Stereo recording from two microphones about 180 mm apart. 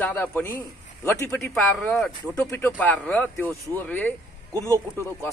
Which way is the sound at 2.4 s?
15° left (ahead or behind).